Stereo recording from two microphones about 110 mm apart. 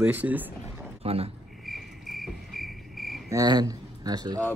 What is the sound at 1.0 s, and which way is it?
Speech, 65° right (ahead or behind).